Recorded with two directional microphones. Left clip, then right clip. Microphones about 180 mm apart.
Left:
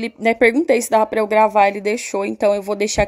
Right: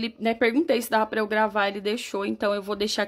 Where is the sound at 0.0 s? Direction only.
25° left (ahead or behind).